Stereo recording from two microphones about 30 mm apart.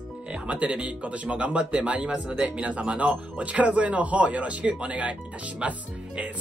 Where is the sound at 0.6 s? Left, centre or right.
Right.